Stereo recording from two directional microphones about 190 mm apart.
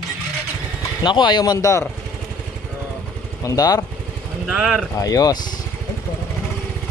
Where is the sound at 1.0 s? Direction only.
25° left (ahead or behind).